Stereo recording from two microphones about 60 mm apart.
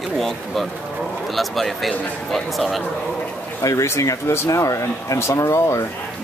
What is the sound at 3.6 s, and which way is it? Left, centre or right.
Speech, left.